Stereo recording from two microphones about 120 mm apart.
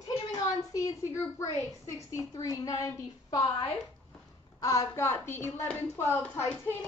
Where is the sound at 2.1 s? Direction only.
30° left (ahead or behind).